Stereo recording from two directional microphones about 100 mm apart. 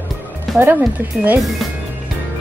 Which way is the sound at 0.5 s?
20° right (ahead or behind).